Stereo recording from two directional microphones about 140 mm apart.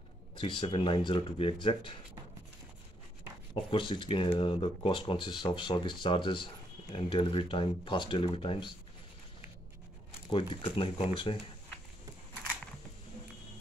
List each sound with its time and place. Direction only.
0.4 s speech: 40° left (ahead or behind)
3.7 s speech: 40° left (ahead or behind)
10.3 s speech: 40° left (ahead or behind)